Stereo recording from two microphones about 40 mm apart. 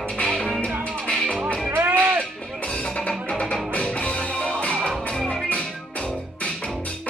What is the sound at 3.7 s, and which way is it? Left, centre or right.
Music, left.